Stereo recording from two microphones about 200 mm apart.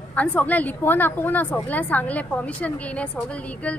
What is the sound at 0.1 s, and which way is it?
A woman's voice, 5° left (ahead or behind).